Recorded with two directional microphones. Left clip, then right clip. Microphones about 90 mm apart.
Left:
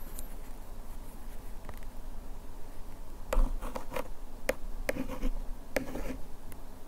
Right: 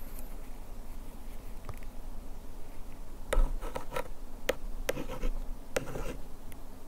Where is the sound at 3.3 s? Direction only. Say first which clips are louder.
Right 1 dB; 15° right (ahead or behind).